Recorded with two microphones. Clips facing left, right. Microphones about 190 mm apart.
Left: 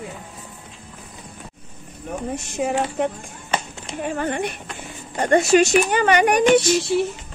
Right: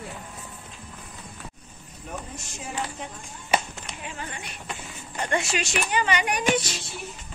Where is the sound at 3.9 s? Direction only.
55° left (ahead or behind).